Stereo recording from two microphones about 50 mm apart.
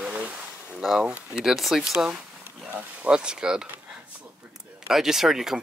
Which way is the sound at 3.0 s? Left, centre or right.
Centre.